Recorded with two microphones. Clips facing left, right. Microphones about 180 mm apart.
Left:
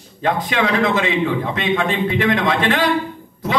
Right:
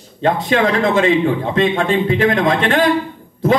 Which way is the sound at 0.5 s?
45° right (ahead or behind).